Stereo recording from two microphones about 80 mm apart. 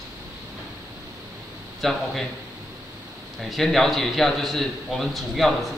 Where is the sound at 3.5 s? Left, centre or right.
Centre.